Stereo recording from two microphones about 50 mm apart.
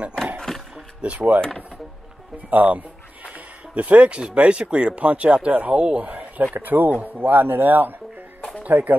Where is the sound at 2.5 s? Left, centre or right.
Right.